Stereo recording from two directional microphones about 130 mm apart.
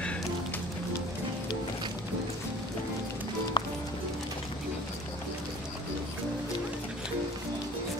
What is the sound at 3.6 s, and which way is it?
Music, 35° left (ahead or behind).